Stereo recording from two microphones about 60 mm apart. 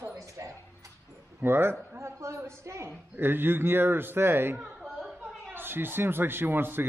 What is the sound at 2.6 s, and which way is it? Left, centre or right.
Speech, right.